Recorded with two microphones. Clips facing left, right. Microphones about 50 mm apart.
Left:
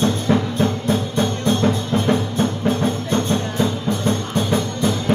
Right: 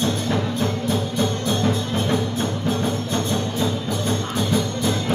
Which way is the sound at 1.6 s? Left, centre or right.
Left.